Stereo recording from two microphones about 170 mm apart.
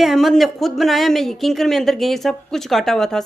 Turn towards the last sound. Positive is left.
turn(degrees=0)  # may be behind; listen again after turning